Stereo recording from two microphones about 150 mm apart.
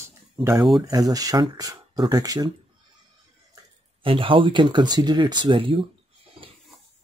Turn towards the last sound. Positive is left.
turn(degrees=-35)  # may be behind; listen again after turning